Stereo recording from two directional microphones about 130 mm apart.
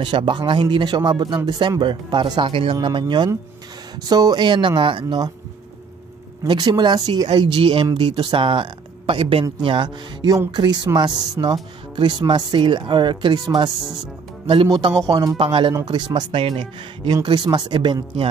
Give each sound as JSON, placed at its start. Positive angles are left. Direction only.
{"t": 0.0, "sound": "speech", "side_deg": -40}
{"t": 6.4, "sound": "speech", "side_deg": -35}
{"t": 7.2, "sound": "speech", "side_deg": -45}
{"t": 15.0, "sound": "speech", "side_deg": -30}
{"t": 15.3, "sound": "speech", "side_deg": -45}
{"t": 15.7, "sound": "speech", "side_deg": -30}